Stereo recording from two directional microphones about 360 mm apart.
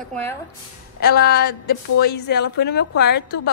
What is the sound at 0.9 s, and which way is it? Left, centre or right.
A woman's voice, left.